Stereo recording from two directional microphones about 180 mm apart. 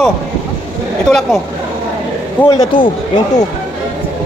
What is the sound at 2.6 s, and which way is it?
Speech, 30° left (ahead or behind).